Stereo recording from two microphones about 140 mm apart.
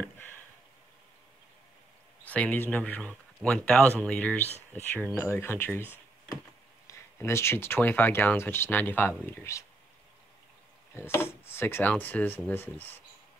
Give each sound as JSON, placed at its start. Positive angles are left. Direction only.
{"t": 0.0, "sound": "a sound", "side_deg": 15}
{"t": 2.2, "sound": "speech", "side_deg": 10}
{"t": 6.9, "sound": "speech", "side_deg": 20}
{"t": 11.0, "sound": "speech", "side_deg": 15}